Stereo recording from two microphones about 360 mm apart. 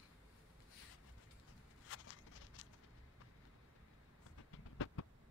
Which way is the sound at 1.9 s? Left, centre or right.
Left.